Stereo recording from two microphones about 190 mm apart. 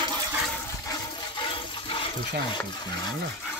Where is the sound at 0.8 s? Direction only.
25° left (ahead or behind).